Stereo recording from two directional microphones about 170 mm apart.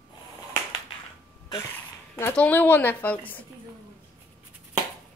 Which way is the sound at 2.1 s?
10° left (ahead or behind).